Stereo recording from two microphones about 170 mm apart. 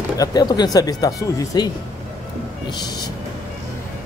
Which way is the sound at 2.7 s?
25° left (ahead or behind).